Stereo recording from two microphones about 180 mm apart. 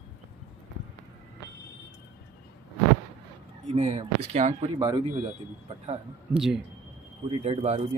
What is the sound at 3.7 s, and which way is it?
Speech, 35° right (ahead or behind).